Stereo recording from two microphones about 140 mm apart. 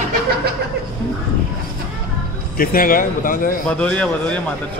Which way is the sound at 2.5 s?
90° left.